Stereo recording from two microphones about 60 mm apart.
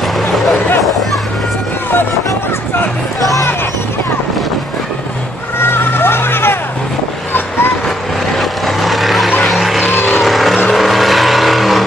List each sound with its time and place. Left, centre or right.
5.6 s vehicle: left
8.4 s vehicle: centre
9.9 s vehicle: left
10.2 s vehicle: centre